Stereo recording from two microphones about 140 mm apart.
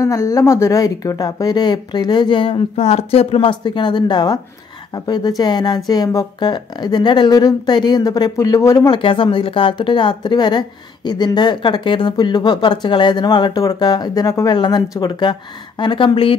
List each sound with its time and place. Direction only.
0.0 s a woman's voice: 25° left (ahead or behind)
8.9 s a woman's voice: 40° left (ahead or behind)